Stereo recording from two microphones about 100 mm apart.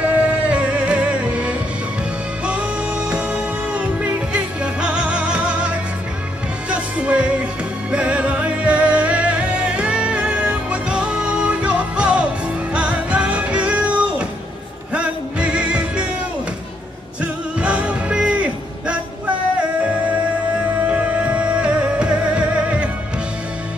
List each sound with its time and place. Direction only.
0.0 s music: 10° right (ahead or behind)
3.1 s music: 15° right (ahead or behind)
6.7 s music: 10° right (ahead or behind)
17.2 s music: 10° right (ahead or behind)
20.8 s music: 15° right (ahead or behind)